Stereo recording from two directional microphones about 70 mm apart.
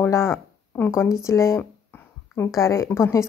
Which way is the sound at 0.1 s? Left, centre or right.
Left.